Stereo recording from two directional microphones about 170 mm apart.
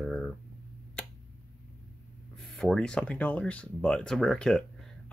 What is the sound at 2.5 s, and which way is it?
Speech, 5° left (ahead or behind).